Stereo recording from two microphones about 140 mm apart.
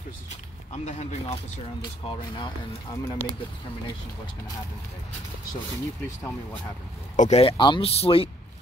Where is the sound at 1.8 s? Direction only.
35° left (ahead or behind).